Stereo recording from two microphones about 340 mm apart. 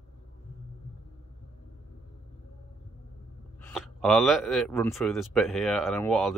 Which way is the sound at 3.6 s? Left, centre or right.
Centre.